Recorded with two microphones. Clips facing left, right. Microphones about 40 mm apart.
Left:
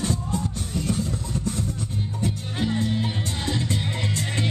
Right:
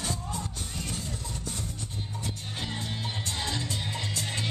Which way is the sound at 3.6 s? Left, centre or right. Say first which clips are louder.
Left 6 dB; left.